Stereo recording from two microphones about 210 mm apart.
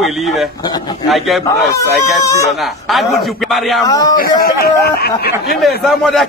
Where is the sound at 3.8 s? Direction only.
15° left (ahead or behind).